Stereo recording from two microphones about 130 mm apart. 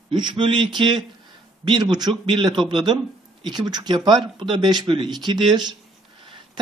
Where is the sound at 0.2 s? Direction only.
40° right (ahead or behind).